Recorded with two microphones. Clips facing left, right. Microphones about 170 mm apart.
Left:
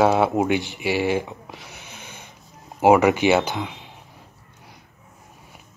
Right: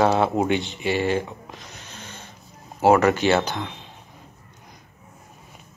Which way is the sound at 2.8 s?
10° left (ahead or behind).